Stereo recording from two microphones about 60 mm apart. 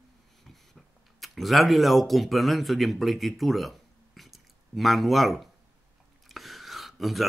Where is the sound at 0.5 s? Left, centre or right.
Centre.